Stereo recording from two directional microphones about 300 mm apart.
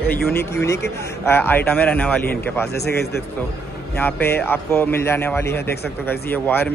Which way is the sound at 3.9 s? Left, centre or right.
Centre.